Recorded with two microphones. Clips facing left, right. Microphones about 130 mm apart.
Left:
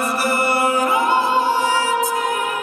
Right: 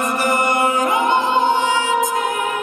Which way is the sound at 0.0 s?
10° left (ahead or behind).